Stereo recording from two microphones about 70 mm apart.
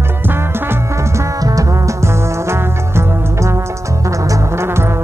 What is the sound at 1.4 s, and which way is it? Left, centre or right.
Music, right.